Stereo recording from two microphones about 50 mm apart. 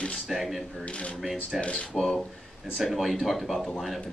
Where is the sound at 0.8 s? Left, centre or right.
Left.